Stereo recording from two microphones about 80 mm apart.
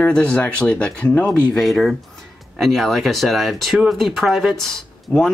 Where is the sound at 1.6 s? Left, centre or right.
Centre.